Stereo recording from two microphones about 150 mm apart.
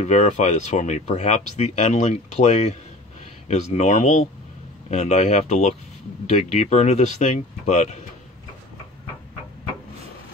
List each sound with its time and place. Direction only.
0.0 s speech: 50° left (ahead or behind)